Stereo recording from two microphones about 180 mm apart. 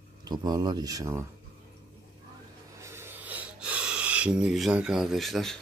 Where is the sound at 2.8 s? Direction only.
15° right (ahead or behind).